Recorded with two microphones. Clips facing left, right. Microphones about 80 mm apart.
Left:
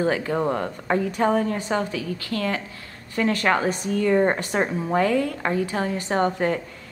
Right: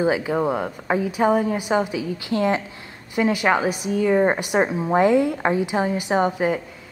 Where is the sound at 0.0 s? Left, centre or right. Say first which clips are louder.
Right 2 dB; centre.